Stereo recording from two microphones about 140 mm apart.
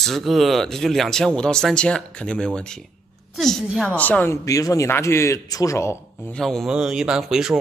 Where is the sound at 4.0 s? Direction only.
10° left (ahead or behind).